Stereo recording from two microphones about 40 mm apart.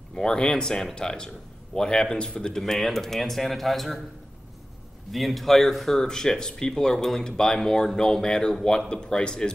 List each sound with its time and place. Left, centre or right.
0.1 s speech: centre
2.6 s speech: centre
5.1 s speech: centre